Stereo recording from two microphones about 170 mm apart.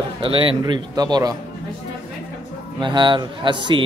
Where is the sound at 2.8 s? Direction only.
30° right (ahead or behind).